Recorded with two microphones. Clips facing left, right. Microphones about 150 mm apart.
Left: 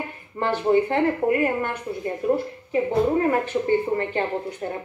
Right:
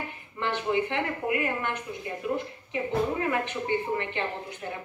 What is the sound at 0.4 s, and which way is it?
A woman's voice, 40° left (ahead or behind).